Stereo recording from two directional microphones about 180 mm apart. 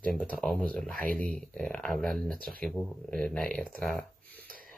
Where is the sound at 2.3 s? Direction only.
55° right (ahead or behind).